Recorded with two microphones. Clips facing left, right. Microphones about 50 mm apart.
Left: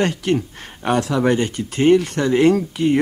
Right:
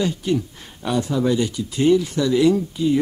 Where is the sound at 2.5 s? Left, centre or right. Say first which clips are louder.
Left 2 dB; left.